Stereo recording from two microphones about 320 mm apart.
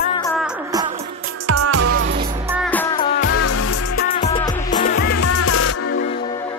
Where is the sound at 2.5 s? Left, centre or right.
Centre.